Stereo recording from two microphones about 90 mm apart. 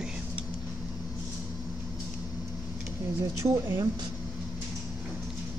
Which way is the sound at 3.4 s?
35° right (ahead or behind).